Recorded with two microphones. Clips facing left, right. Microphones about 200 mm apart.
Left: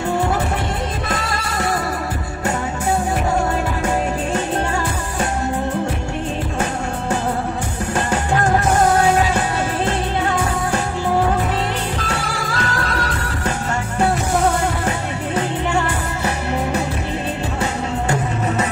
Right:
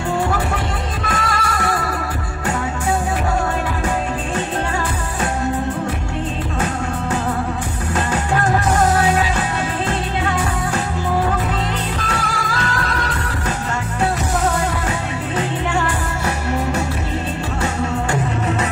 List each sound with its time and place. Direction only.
1.0 s music: 25° left (ahead or behind)